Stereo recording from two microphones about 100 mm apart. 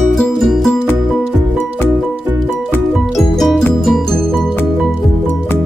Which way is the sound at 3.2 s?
Centre (ahead or behind).